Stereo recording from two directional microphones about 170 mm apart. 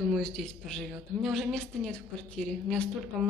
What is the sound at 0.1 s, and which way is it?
A woman's voice, 5° left (ahead or behind).